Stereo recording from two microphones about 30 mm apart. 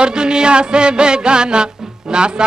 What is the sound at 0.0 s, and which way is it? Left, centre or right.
Music, right.